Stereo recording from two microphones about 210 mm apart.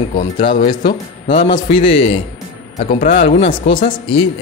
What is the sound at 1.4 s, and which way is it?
Speech, 25° left (ahead or behind).